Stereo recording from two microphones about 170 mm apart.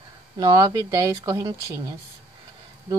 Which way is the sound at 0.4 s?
25° right (ahead or behind).